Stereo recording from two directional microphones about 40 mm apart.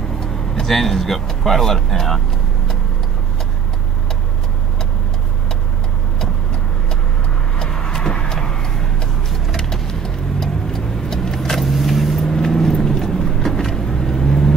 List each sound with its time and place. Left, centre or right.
0.6 s speech: centre
7.5 s vehicle: centre
12.3 s vehicle: centre